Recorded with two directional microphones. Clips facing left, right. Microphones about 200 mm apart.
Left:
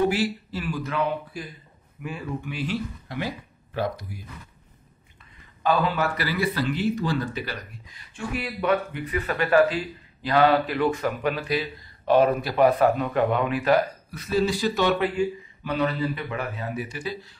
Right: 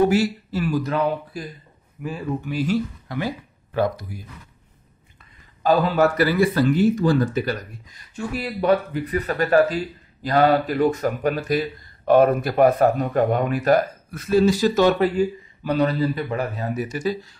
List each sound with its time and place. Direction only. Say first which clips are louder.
0.1 s speech: right 5 dB; 45° right (ahead or behind)
5.6 s speech: right 6 dB; 40° right (ahead or behind)